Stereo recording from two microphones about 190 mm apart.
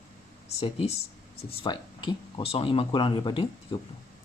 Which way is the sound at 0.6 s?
35° left (ahead or behind).